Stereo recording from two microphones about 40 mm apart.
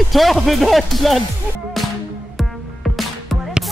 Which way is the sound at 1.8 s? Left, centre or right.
Centre.